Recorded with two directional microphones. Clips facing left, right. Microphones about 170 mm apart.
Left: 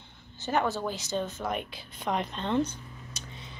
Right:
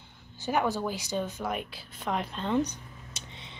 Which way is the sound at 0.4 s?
10° right (ahead or behind).